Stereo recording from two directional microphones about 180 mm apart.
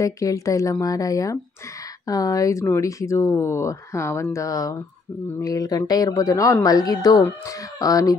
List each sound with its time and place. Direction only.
0.0 s speech: 20° left (ahead or behind)